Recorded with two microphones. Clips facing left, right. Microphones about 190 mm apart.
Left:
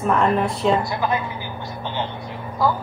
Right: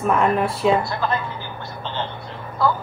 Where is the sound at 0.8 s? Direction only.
15° left (ahead or behind).